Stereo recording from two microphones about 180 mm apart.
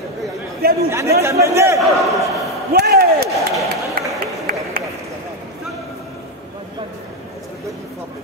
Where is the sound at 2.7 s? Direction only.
60° right (ahead or behind).